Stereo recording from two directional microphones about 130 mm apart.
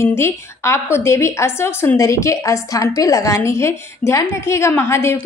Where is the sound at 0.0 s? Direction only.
20° left (ahead or behind).